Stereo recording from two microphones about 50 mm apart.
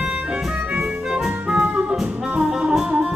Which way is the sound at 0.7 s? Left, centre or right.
Right.